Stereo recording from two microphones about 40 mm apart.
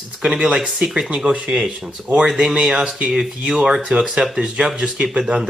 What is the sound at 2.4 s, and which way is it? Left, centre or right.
Speech, centre.